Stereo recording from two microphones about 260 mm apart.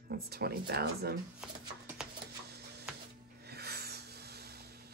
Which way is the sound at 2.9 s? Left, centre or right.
Centre.